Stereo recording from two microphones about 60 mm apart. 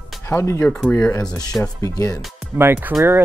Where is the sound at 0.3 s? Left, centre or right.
Left.